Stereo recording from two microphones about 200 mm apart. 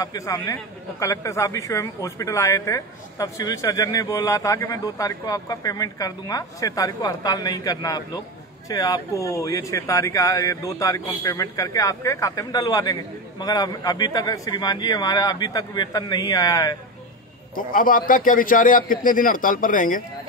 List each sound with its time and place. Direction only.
0.0 s a man's voice: 15° left (ahead or behind)
17.6 s a man's voice: 45° left (ahead or behind)